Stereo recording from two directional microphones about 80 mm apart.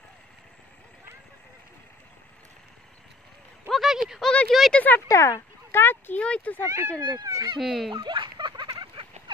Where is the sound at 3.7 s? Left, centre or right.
Centre.